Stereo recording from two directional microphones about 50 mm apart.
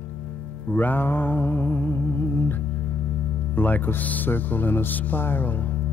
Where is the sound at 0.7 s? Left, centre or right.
Left.